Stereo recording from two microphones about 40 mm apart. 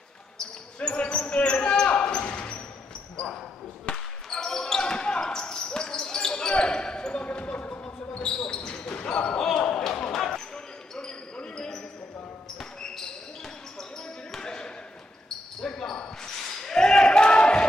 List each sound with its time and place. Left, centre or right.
0.7 s basketball bounce: left
2.2 s a sound: left
3.9 s basketball bounce: centre
16.7 s basketball bounce: left